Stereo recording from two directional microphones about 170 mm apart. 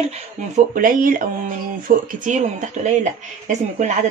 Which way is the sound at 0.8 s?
55° right (ahead or behind).